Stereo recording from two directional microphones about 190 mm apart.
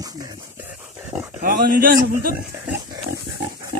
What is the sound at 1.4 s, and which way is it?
A man's voice, 50° right (ahead or behind).